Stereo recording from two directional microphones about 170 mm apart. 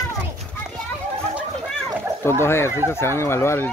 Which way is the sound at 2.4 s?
15° left (ahead or behind).